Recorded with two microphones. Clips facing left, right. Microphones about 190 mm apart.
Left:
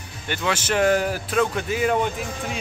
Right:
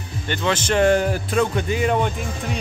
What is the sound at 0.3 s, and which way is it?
Speech, 10° left (ahead or behind).